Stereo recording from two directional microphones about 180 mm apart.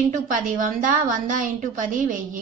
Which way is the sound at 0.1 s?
45° right (ahead or behind).